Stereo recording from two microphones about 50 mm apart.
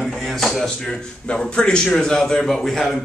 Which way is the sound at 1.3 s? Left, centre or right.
Left.